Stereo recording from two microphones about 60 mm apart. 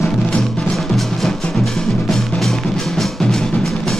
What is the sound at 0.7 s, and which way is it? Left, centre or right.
Music, centre.